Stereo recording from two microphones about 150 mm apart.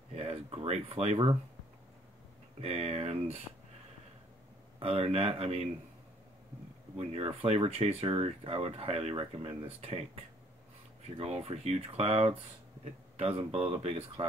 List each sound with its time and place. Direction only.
0.1 s a sound: 40° right (ahead or behind)
2.6 s speech: 45° right (ahead or behind)
4.7 s speech: 40° right (ahead or behind)
7.0 s speech: 40° right (ahead or behind)